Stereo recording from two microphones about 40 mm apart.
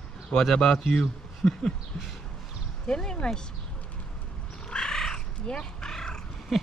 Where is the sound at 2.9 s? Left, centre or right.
Left.